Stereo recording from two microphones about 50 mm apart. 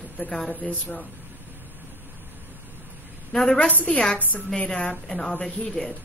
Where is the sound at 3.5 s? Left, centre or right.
Left.